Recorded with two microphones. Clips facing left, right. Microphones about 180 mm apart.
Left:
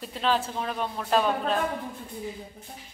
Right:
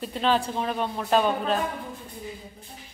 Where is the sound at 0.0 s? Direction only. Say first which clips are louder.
Right 2 dB; centre (ahead or behind).